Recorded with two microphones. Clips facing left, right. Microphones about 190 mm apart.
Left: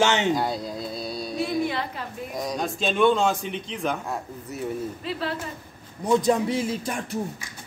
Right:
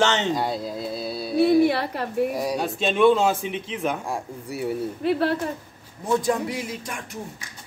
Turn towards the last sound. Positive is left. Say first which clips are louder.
# left 5 dB
turn(degrees=30)  # may be behind; listen again after turning